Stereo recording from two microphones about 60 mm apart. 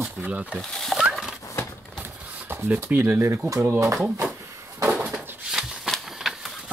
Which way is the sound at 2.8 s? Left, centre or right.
Right.